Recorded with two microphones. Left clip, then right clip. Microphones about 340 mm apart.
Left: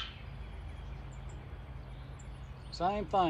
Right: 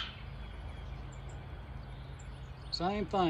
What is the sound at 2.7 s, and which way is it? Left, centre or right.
Speech, centre.